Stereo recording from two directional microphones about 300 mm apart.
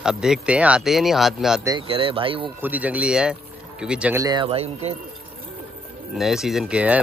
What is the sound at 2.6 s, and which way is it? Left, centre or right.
A man's voice, centre.